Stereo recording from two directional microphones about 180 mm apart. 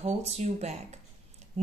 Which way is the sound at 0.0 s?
35° right (ahead or behind).